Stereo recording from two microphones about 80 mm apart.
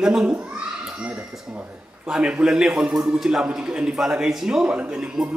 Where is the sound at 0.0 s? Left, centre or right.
Centre.